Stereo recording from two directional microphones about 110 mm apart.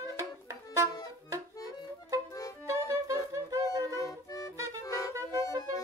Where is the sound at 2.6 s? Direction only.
30° right (ahead or behind).